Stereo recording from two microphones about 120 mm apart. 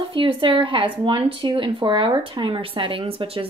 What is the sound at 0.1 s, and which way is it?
Speech, 45° right (ahead or behind).